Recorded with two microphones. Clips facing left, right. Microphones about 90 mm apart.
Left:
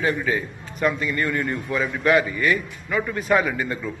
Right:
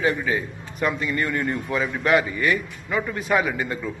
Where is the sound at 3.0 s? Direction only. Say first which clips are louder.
Left 2 dB; 10° right (ahead or behind).